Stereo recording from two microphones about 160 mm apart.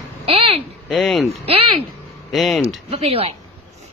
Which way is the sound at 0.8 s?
Centre (ahead or behind).